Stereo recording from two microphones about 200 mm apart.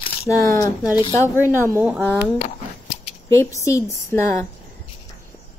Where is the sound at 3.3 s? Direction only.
15° left (ahead or behind).